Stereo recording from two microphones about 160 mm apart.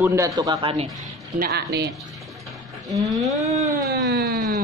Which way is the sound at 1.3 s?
80° right.